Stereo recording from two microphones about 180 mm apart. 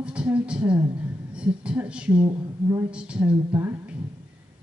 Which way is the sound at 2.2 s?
20° right (ahead or behind).